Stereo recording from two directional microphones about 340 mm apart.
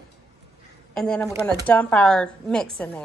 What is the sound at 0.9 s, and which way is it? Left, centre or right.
A woman's voice, centre.